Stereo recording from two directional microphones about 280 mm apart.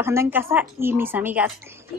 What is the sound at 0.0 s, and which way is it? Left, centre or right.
A woman's voice, centre.